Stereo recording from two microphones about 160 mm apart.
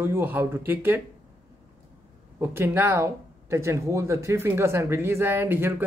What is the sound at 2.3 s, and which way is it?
Speech, 15° right (ahead or behind).